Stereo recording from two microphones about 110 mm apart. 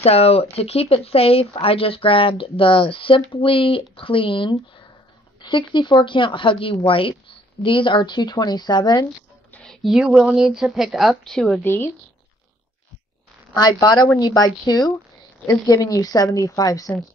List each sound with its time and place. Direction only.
0.0 s speech: 70° left (ahead or behind); by 9.0 s 40° left (ahead or behind)
9.5 s a sound: 10° left (ahead or behind)
9.8 s speech: 5° right (ahead or behind)
11.6 s a woman's voice: 20° left (ahead or behind)
13.6 s speech: 40° left (ahead or behind)